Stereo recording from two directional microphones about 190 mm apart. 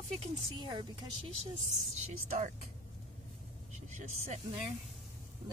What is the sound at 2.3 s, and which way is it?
Speech, 40° right (ahead or behind).